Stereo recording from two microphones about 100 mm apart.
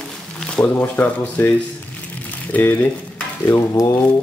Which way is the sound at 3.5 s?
35° left (ahead or behind).